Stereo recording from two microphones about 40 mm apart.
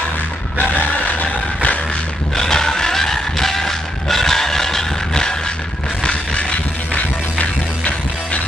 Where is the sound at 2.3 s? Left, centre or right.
Centre.